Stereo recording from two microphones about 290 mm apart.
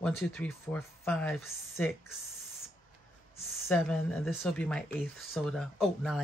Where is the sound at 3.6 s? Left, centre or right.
Centre.